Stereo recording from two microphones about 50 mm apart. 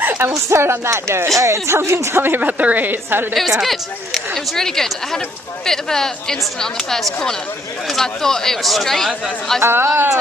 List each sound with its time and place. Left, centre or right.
0.2 s speech: right
1.4 s speech: right
2.2 s a woman's voice: right
3.3 s a woman's voice: centre
4.1 s speech: centre
9.6 s speech: right